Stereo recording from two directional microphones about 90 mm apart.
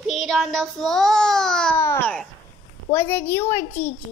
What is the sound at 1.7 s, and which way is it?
A child's voice, 30° left (ahead or behind).